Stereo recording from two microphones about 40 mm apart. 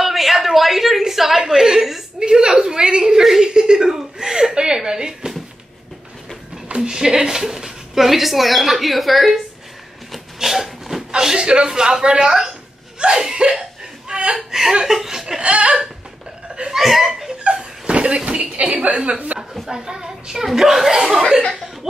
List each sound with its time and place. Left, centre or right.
0.0 s a sound: centre
2.1 s a sound: right
3.9 s chuckle: centre
6.8 s a woman's voice: centre
10.1 s a sound: centre
11.1 s speech: centre
13.6 s a sound: right
14.3 s chuckle: centre
15.4 s chuckle: right
16.7 s chuckle: centre
17.4 s chuckle: right
19.7 s speech: centre